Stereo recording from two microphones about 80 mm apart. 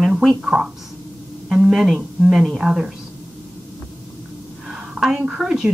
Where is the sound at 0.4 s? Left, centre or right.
Centre.